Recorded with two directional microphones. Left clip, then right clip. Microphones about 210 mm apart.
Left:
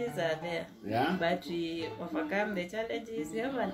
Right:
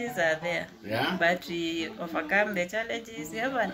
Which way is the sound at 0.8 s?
15° left (ahead or behind).